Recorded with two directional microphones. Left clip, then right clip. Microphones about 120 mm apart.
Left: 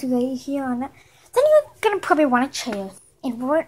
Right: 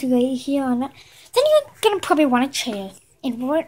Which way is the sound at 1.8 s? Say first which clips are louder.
Right 1 dB; 30° right (ahead or behind).